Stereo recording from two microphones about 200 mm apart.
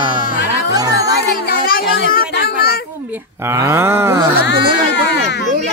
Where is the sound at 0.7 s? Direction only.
20° right (ahead or behind).